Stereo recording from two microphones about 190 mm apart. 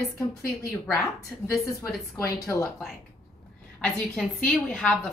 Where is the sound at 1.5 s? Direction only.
15° left (ahead or behind).